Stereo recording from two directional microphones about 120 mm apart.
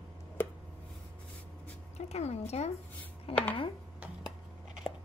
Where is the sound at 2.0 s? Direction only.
65° left (ahead or behind).